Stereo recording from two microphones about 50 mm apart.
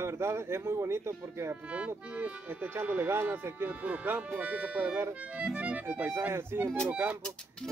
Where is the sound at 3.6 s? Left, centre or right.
Right.